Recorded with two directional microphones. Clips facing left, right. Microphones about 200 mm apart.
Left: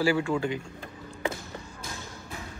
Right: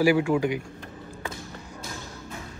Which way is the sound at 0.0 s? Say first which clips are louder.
Right 4 dB; 10° right (ahead or behind).